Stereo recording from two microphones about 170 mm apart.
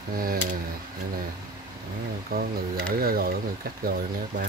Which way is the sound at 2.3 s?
60° right (ahead or behind).